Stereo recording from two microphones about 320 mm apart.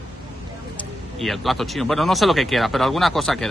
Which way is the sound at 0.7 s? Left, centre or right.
Centre.